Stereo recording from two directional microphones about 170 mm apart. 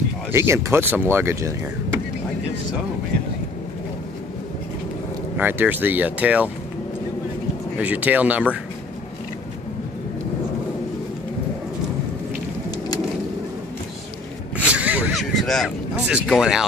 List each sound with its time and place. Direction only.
0.3 s speech: 15° right (ahead or behind)
5.4 s speech: 10° right (ahead or behind)
7.7 s speech: 10° right (ahead or behind)
14.6 s vehicle: 5° right (ahead or behind)
16.3 s speech: 5° right (ahead or behind)